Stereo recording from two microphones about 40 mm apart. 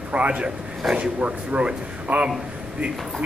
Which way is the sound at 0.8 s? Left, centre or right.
Centre.